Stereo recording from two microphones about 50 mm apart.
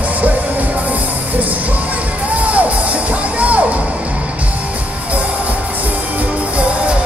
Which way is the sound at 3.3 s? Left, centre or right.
Right.